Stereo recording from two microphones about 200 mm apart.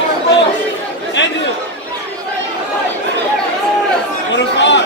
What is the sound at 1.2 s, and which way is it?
Speech, 65° left (ahead or behind).